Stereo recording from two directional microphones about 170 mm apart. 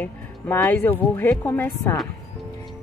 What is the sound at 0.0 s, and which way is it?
Speech, 10° left (ahead or behind).